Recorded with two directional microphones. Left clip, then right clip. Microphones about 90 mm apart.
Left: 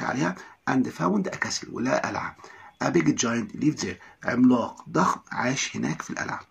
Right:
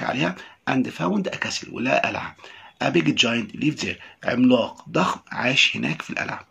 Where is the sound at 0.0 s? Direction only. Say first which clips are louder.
Right 3 dB; 10° right (ahead or behind).